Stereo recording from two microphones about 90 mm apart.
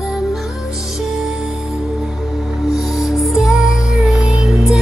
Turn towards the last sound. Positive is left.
turn(degrees=-5)  # may be behind; listen again after turning